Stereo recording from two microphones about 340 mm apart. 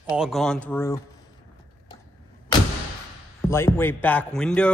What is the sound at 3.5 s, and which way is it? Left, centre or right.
Music, centre.